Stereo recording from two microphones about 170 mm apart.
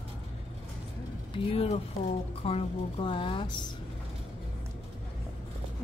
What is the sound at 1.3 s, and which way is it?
A woman's voice, 35° left (ahead or behind).